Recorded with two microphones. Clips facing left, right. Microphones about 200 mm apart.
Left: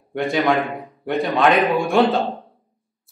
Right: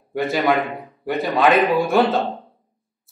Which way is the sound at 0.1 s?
Centre (ahead or behind).